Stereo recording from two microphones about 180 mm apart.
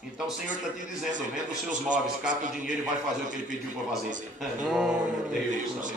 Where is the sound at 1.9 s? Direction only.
45° right (ahead or behind).